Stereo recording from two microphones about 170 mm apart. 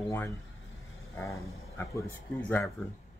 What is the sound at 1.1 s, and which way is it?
Speech, 15° left (ahead or behind).